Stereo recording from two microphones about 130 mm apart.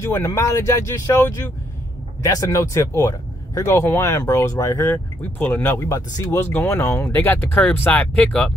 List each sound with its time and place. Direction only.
0.0 s speech: 25° left (ahead or behind)
5.9 s speech: 25° left (ahead or behind); by 8.5 s 10° left (ahead or behind)